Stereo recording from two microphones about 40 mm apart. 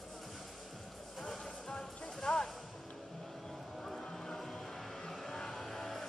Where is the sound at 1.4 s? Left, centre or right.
Centre.